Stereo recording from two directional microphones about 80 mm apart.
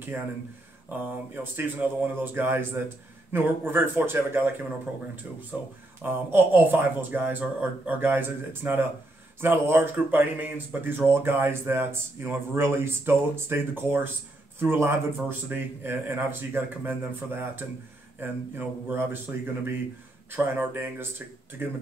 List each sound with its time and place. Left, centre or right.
0.8 s speech: right
6.0 s speech: right